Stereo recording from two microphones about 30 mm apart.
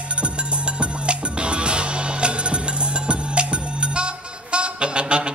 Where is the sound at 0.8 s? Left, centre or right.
Right.